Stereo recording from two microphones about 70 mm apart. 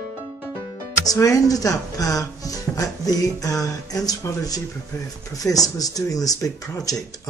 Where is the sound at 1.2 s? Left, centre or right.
Left.